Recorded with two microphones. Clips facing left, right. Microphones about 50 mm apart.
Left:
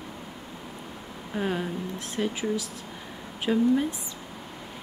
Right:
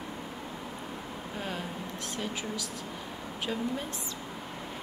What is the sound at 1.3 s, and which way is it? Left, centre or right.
Speech, centre.